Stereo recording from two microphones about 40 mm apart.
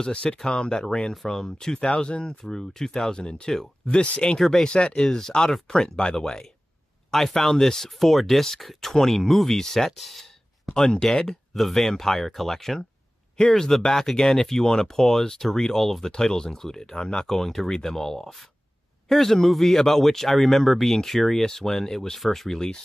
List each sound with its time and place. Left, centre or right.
0.0 s speech: left
2.4 s speech: centre; by 4.4 s left
4.4 s speech: centre
4.6 s speech: left; by 10.7 s centre
10.7 s speech: centre
11.5 s speech: centre